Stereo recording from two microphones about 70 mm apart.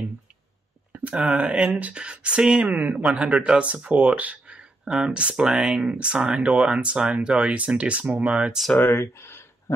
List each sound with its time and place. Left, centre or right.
0.9 s speech: centre
2.6 s speech: right
3.0 s speech: centre
8.8 s speech: left
9.7 s dog: left